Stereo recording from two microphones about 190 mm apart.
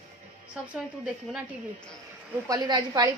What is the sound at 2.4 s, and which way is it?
Speech, 20° right (ahead or behind).